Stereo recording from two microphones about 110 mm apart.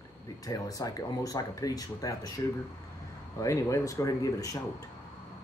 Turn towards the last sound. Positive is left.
turn(degrees=30)  # may be behind; listen again after turning